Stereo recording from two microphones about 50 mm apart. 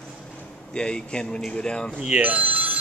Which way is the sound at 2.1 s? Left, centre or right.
Right.